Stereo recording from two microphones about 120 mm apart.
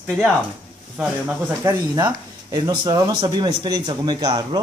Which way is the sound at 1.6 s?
30° right (ahead or behind).